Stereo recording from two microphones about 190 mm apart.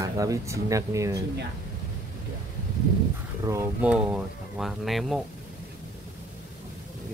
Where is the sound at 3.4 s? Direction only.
10° right (ahead or behind).